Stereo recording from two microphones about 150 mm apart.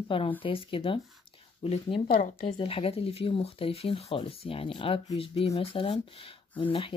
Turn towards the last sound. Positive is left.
turn(degrees=35)  # may be behind; listen again after turning